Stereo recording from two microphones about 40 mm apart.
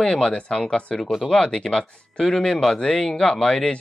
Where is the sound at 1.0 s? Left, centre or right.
Centre.